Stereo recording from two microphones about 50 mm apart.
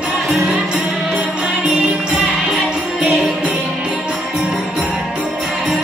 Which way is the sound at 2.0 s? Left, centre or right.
Right.